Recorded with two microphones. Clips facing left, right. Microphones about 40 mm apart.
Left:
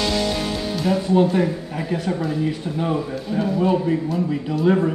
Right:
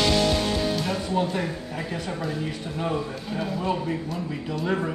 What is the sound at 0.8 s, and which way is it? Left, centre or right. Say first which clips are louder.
A man's voice: left 8 dB; centre.